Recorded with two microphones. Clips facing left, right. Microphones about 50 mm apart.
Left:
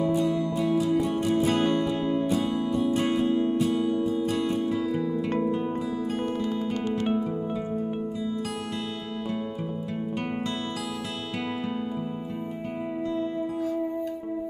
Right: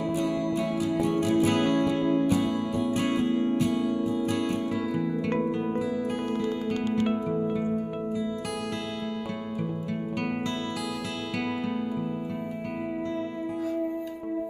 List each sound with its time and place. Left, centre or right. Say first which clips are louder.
0.2 s music: left 2 dB; right
5.3 s music: left 1 dB; right